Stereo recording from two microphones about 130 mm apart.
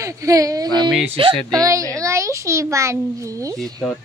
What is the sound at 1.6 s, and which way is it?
A child's voice, 25° right (ahead or behind).